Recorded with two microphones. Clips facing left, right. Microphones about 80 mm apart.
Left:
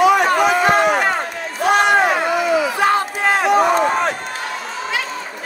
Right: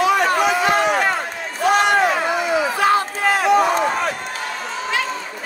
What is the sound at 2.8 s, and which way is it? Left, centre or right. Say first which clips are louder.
Crowd: left 1 dB; left.